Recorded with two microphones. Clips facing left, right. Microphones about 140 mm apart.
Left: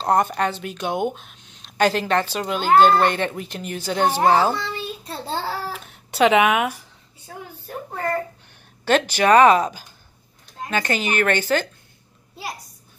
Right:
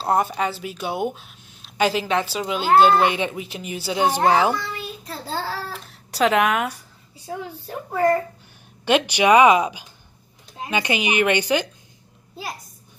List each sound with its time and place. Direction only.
0.0 s a woman's voice: 5° right (ahead or behind)
4.6 s child singing: 30° left (ahead or behind)
5.7 s cat: centre (ahead or behind)
8.8 s a woman's voice: 15° right (ahead or behind)